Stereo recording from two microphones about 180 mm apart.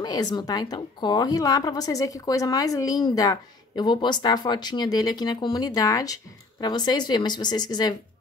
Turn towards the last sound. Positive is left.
turn(degrees=20)  # may be behind; listen again after turning